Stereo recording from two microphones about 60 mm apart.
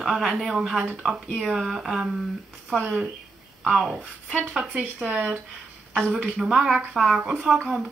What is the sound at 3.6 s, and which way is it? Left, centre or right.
Speech, centre.